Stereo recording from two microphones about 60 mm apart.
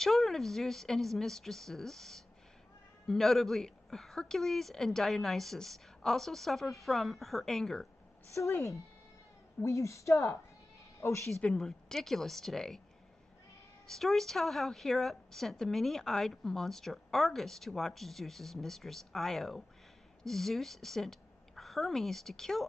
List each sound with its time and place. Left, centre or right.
0.0 s a woman's voice: centre
8.4 s a woman's voice: left
11.5 s a woman's voice: centre
13.8 s a woman's voice: centre